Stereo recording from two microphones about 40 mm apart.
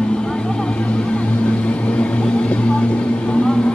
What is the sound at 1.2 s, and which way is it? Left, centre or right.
Vehicle, left.